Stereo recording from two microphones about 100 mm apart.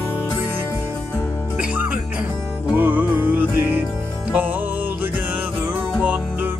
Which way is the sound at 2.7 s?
15° right (ahead or behind).